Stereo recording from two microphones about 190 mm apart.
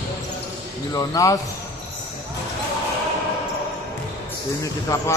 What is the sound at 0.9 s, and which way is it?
Speech, 20° left (ahead or behind).